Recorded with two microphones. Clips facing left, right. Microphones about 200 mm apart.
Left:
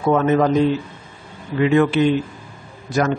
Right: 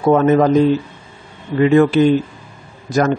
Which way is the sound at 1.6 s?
40° right (ahead or behind).